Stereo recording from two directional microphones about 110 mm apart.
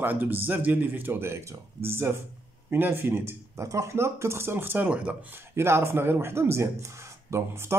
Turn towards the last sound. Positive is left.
turn(degrees=-25)  # may be behind; listen again after turning